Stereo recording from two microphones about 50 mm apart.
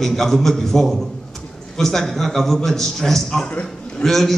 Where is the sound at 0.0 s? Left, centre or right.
Centre.